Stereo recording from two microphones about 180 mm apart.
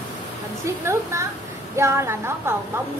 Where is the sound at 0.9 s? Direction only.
15° right (ahead or behind).